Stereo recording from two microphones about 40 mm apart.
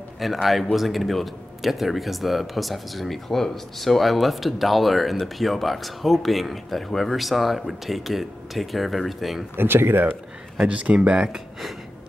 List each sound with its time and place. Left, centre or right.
0.2 s speech: centre
9.6 s speech: right
10.7 s speech: right
11.2 s speech: centre